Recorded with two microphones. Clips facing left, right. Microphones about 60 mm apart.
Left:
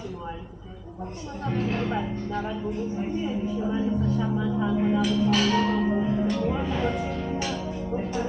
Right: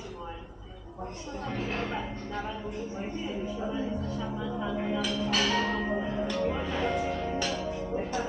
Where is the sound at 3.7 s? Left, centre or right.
Left.